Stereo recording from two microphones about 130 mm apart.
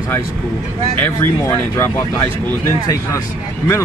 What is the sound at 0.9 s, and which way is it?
Speech, 15° left (ahead or behind).